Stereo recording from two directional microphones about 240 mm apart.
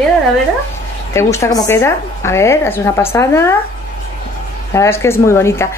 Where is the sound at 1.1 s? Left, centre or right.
Centre.